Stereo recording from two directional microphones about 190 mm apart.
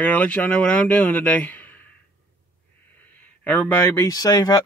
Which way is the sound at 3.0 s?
10° left (ahead or behind).